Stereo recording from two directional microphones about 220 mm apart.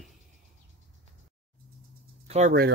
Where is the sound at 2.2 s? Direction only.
30° right (ahead or behind).